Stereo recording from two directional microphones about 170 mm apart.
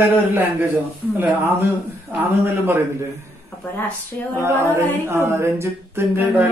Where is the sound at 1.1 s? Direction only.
15° right (ahead or behind).